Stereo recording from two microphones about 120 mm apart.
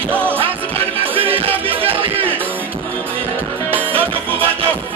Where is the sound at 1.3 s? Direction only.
50° right (ahead or behind).